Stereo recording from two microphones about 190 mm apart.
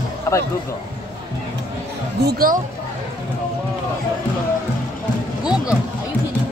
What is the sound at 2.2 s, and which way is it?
Speech, 50° right (ahead or behind).